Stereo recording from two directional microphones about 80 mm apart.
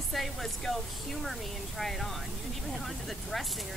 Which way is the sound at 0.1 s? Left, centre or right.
Centre.